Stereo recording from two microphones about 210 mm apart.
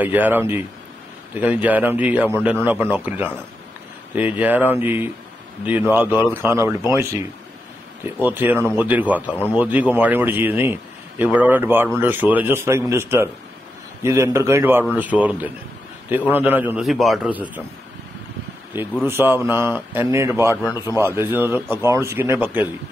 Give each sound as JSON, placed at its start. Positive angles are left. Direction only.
{"t": 0.0, "sound": "a man's voice", "side_deg": -10}
{"t": 8.2, "sound": "a man's voice", "side_deg": -10}
{"t": 19.0, "sound": "a man's voice", "side_deg": -10}
{"t": 20.6, "sound": "a man's voice", "side_deg": 15}
{"t": 21.0, "sound": "a man's voice", "side_deg": -10}